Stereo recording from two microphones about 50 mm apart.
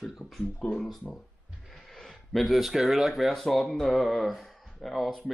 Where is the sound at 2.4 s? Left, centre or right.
Centre.